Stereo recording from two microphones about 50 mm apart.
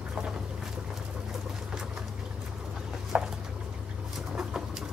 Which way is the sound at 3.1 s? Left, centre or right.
Right.